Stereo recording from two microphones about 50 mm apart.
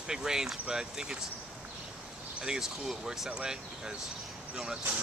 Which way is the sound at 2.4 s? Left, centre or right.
Centre.